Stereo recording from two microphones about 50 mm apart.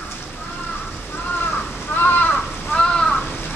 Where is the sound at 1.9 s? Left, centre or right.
Left.